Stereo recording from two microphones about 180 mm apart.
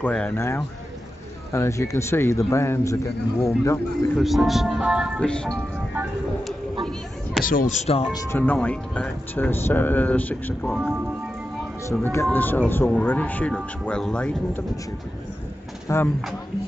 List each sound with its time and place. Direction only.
0.0 s speech: 5° left (ahead or behind)
4.2 s speech: centre (ahead or behind)
5.2 s speech: 5° left (ahead or behind)
7.4 s speech: 45° left (ahead or behind)
8.1 s speech: 20° left (ahead or behind)
8.4 s speech: 10° left (ahead or behind)
11.9 s speech: 10° left (ahead or behind)
15.9 s speech: 15° left (ahead or behind)